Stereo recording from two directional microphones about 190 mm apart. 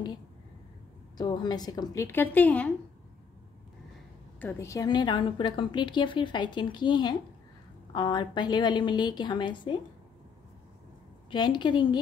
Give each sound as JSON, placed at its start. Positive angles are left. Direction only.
{"t": 1.1, "sound": "a woman's voice", "side_deg": 20}
{"t": 4.4, "sound": "a woman's voice", "side_deg": 10}
{"t": 11.2, "sound": "a woman's voice", "side_deg": 25}